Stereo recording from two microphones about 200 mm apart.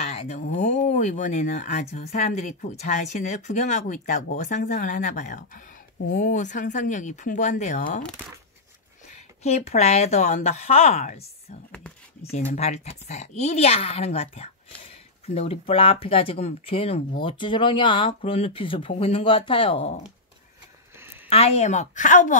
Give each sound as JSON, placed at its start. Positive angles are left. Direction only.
{"t": 0.1, "sound": "speech", "side_deg": 35}
{"t": 9.4, "sound": "speech", "side_deg": 30}
{"t": 21.3, "sound": "speech", "side_deg": 30}